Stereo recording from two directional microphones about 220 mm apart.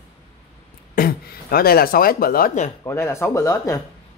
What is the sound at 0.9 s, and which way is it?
Speech, 40° left (ahead or behind).